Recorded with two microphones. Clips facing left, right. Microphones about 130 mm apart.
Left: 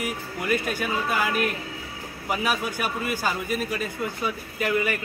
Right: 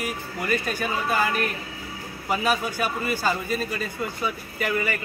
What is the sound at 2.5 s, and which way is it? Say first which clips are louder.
Speech: right 3 dB; 10° left (ahead or behind).